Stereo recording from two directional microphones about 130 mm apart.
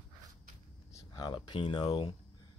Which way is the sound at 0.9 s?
30° left (ahead or behind).